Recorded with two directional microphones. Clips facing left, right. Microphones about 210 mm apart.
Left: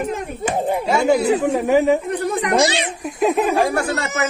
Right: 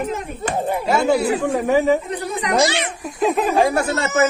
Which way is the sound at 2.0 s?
60° left (ahead or behind).